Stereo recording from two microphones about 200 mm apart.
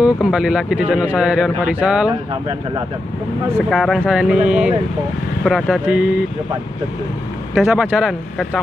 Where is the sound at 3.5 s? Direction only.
5° left (ahead or behind).